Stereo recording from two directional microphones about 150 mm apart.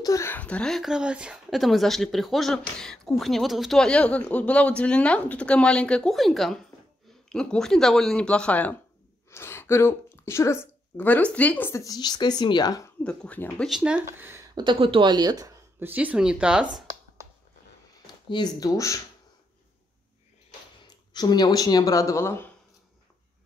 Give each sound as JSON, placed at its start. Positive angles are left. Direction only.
{"t": 0.0, "sound": "speech", "side_deg": 20}
{"t": 13.0, "sound": "speech", "side_deg": 5}
{"t": 13.7, "sound": "speech", "side_deg": -5}
{"t": 14.5, "sound": "speech", "side_deg": -30}
{"t": 15.8, "sound": "speech", "side_deg": -10}
{"t": 18.3, "sound": "speech", "side_deg": 25}
{"t": 20.8, "sound": "speech", "side_deg": 25}